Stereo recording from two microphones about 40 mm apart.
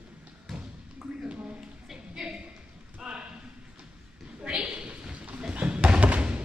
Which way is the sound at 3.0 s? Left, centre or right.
Right.